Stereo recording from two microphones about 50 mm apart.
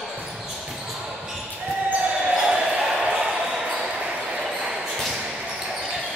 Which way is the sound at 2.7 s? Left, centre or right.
Centre.